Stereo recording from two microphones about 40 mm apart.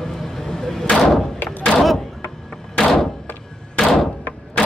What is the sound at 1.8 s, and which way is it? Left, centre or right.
Thunk, centre.